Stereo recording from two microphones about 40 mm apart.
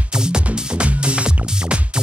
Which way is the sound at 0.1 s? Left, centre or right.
Right.